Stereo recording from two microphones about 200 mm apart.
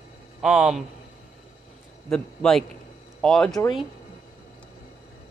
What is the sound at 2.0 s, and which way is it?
Speech, 5° left (ahead or behind).